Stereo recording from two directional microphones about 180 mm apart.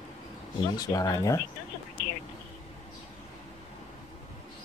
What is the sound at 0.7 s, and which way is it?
Speech, 20° left (ahead or behind).